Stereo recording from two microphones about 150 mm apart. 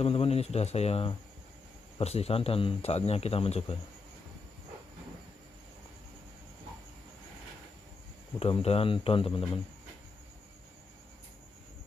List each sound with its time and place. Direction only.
0.0 s speech: 40° left (ahead or behind)
8.4 s speech: 40° left (ahead or behind)